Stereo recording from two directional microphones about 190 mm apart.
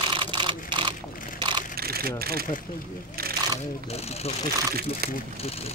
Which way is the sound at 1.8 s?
55° right (ahead or behind).